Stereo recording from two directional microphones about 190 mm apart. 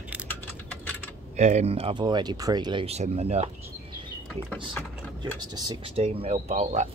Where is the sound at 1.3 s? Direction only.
35° right (ahead or behind).